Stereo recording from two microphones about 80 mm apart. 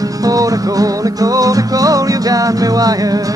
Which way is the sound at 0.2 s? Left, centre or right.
Right.